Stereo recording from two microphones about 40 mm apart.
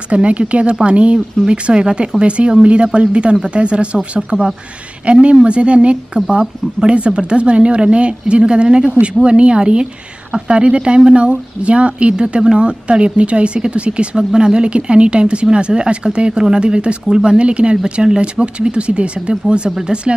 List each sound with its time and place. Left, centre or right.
0.1 s speech: right